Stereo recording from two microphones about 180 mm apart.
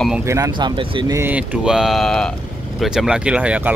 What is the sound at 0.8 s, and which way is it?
Speech, 25° right (ahead or behind).